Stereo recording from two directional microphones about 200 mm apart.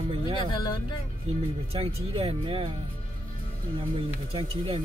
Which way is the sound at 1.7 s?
30° right (ahead or behind).